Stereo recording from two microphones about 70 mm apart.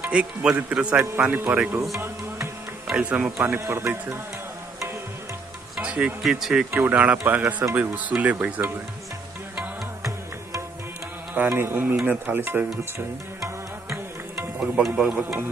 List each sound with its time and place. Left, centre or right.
0.0 s speech: centre
2.0 s music: right
3.0 s speech: centre
3.3 s speech: right
5.8 s insect: centre
6.2 s speech: centre
6.7 s speech: right
11.3 s speech: right
13.4 s music: right
15.0 s speech: centre